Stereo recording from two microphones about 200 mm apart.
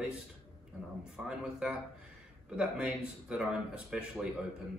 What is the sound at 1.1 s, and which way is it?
Speech, 5° right (ahead or behind).